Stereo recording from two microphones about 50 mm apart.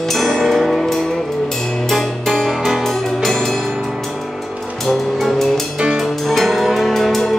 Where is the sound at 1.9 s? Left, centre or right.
Centre.